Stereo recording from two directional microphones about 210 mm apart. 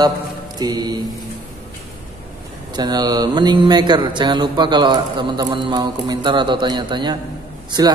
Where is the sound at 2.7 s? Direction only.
20° right (ahead or behind).